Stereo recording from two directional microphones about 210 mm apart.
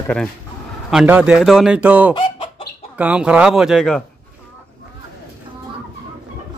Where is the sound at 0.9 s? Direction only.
5° right (ahead or behind).